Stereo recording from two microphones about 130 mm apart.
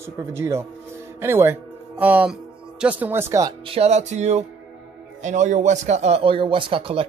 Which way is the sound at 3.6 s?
50° right (ahead or behind).